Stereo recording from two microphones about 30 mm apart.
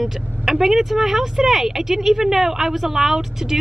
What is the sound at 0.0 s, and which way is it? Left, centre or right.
A woman's voice, centre.